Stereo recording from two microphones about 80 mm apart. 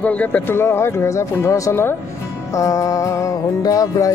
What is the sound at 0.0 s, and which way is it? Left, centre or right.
Speech, centre.